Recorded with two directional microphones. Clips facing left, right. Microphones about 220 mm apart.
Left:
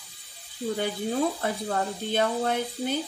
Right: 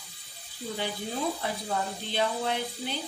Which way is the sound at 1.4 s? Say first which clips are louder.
Left 4 dB; 50° left (ahead or behind).